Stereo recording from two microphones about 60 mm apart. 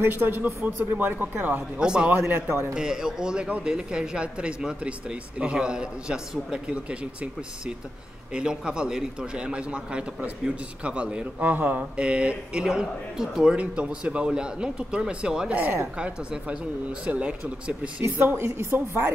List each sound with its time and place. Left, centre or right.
0.0 s a man's voice: right
1.8 s speech: centre
2.0 s speech: right
2.7 s a man's voice: centre
8.3 s a man's voice: centre
13.6 s speech: right
15.6 s speech: right
16.0 s a man's voice: centre
18.2 s a woman's voice: right